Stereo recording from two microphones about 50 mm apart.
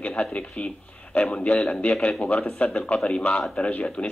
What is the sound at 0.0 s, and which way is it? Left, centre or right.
A man's voice, left.